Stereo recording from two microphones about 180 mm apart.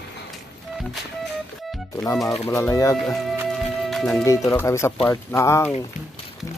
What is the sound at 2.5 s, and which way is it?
Speech, 20° left (ahead or behind).